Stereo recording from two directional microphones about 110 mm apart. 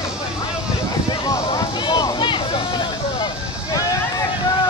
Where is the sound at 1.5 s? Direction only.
40° left (ahead or behind).